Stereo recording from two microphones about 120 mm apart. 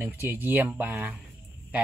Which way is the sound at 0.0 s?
15° right (ahead or behind).